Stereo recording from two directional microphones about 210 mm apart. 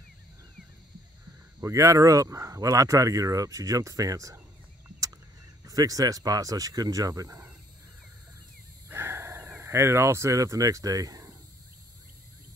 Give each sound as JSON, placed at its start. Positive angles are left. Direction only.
{"t": 1.6, "sound": "speech", "side_deg": -15}
{"t": 5.7, "sound": "speech", "side_deg": -15}
{"t": 8.8, "sound": "a sound", "side_deg": -10}